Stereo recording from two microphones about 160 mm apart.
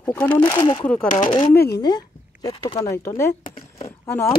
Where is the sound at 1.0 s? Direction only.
50° left (ahead or behind).